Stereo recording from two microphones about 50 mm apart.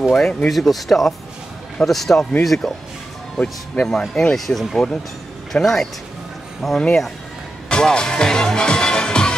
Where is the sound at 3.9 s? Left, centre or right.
Centre.